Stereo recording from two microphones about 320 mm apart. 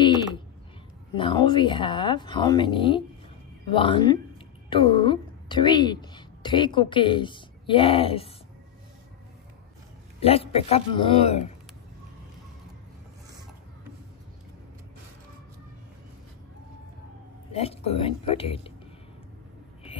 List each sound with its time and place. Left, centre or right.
0.0 s a sound: centre
1.1 s a woman's voice: centre
10.2 s speech: centre
17.5 s speech: centre